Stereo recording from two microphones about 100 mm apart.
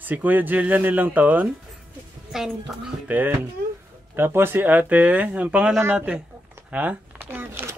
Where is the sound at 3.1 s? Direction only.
20° right (ahead or behind).